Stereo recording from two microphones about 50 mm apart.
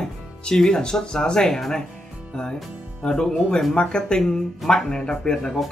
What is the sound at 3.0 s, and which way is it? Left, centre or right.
Speech, centre.